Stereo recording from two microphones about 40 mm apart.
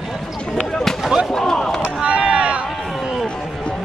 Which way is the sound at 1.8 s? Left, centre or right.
Right.